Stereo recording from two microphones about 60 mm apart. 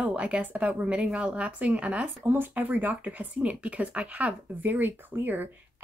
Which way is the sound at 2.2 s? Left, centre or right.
Right.